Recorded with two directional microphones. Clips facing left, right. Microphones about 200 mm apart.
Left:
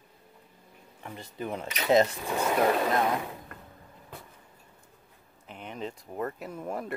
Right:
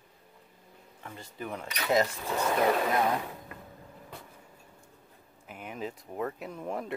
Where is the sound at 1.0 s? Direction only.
20° left (ahead or behind).